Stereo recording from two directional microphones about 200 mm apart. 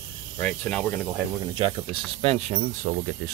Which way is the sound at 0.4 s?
5° left (ahead or behind).